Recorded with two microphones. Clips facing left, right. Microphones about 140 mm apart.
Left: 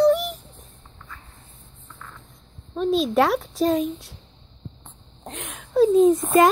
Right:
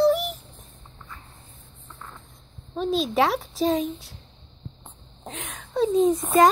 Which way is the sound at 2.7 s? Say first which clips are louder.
Left 3 dB; centre (ahead or behind).